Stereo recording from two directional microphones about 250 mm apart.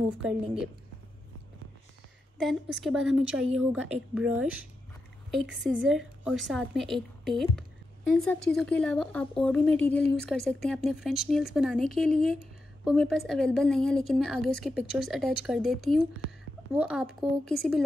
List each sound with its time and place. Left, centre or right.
0.2 s a woman's voice: centre
2.4 s a woman's voice: centre